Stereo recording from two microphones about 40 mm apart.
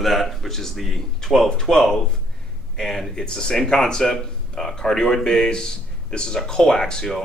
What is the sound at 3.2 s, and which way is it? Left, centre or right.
Speech, centre.